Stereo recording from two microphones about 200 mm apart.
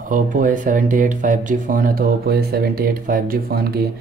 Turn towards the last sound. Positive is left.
turn(degrees=-50)  # may be behind; listen again after turning